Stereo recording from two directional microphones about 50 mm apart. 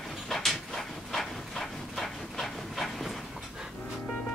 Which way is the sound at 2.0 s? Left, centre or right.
Centre.